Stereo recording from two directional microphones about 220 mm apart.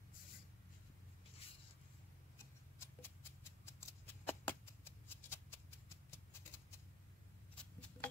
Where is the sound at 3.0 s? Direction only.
10° left (ahead or behind).